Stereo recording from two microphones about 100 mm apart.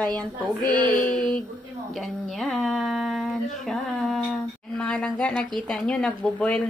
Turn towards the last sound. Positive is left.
turn(degrees=10)  # may be behind; listen again after turning